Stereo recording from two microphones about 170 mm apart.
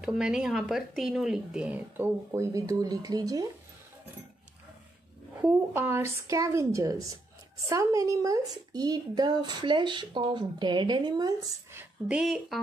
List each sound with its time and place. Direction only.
0.0 s speech: 5° right (ahead or behind); by 3.4 s 20° right (ahead or behind)
5.4 s a woman's voice: 10° right (ahead or behind)